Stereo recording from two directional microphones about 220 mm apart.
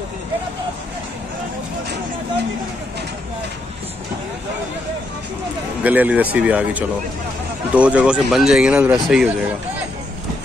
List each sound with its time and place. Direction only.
5.9 s speech: 5° right (ahead or behind)